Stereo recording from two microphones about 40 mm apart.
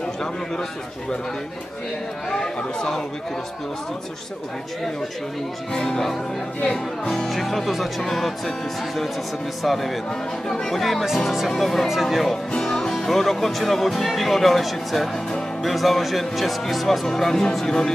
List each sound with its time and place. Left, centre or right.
2.2 s speech: centre
5.7 s speech: centre
7.2 s speech: centre
12.5 s music: centre
12.9 s speech: centre